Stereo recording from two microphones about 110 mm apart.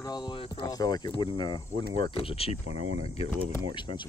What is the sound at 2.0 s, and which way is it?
Speech, 55° left (ahead or behind).